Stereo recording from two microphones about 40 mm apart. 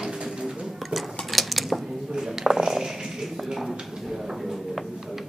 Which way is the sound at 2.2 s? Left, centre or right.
Centre.